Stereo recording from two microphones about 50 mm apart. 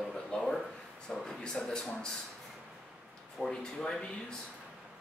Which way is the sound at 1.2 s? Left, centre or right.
Centre.